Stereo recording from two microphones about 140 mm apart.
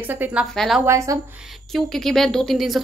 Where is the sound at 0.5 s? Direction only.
Centre (ahead or behind).